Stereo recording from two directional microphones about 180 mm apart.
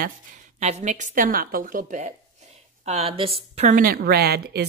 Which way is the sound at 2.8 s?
35° right (ahead or behind).